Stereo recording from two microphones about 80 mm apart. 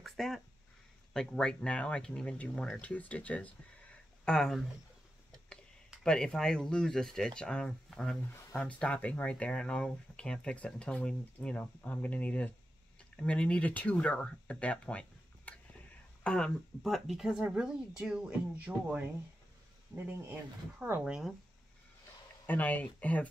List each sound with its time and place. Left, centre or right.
0.0 s a sound: centre
1.1 s speech: centre
4.2 s speech: centre
6.0 s speech: centre
20.0 s speech: right
21.0 s speech: centre
22.5 s speech: left